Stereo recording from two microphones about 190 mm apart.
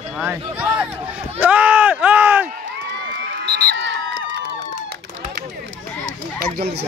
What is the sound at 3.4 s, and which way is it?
Crowd, 70° right (ahead or behind).